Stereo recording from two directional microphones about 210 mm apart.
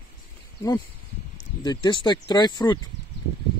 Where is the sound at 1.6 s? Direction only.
20° left (ahead or behind).